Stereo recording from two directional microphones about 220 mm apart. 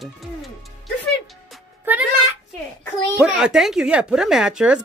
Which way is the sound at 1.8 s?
5° right (ahead or behind).